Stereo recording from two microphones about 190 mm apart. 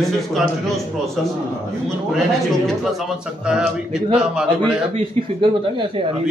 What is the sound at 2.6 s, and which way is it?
A man's voice, centre (ahead or behind).